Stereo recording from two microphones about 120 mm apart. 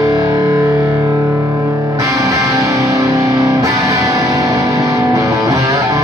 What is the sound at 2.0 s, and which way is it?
Music, 25° right (ahead or behind).